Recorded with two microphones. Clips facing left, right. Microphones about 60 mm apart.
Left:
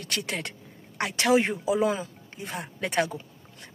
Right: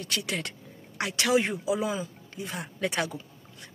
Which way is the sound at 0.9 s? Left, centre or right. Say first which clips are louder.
Left 2 dB; left.